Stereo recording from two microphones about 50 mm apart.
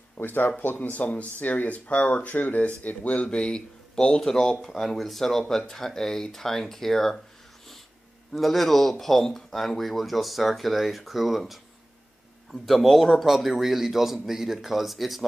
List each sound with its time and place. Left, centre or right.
0.2 s speech: left; by 7.2 s centre
8.3 s speech: centre
12.6 s speech: centre